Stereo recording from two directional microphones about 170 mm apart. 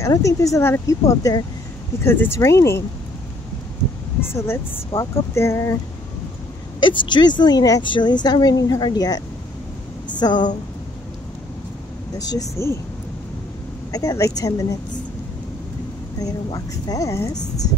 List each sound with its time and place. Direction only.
0.0 s a woman's voice: 20° left (ahead or behind)
4.2 s speech: 15° left (ahead or behind)
6.8 s a woman's voice: 30° left (ahead or behind)
12.2 s a woman's voice: 20° left (ahead or behind)
13.9 s a woman's voice: 20° left (ahead or behind)
16.2 s a woman's voice: 20° left (ahead or behind)